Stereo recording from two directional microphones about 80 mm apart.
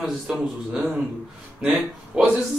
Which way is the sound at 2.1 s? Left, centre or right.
Centre.